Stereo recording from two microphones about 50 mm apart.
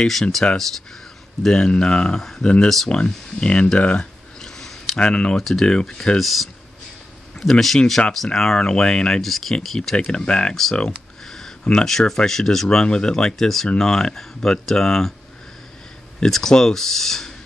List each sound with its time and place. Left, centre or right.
0.0 s speech: centre
1.4 s speech: centre
2.1 s speech: centre
4.4 s a sound: centre
4.9 s speech: centre
5.4 s speech: centre
6.1 s speech: centre
9.2 s speech: centre
9.9 s speech: centre
10.5 s speech: centre
11.2 s a sound: centre
11.7 s speech: centre
12.6 s speech: centre
16.3 s speech: centre